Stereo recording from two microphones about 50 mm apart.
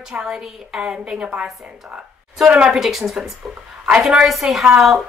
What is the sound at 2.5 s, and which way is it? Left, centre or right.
Speech, centre.